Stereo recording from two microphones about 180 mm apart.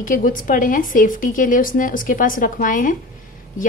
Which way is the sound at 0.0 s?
50° left (ahead or behind).